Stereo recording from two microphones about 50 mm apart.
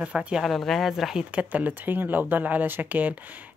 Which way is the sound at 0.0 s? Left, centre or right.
Right.